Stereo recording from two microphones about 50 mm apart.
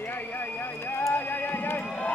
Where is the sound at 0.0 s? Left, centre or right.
Left.